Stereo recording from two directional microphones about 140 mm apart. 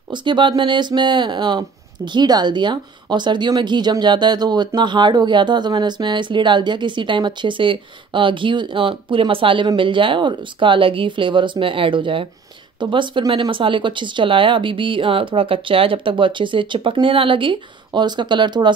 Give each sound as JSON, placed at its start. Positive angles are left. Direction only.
{"t": 0.1, "sound": "speech", "side_deg": -35}